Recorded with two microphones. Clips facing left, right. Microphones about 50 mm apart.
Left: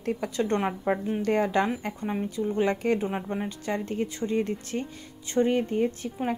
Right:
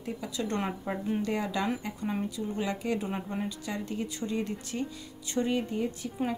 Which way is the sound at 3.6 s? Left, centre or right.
Left.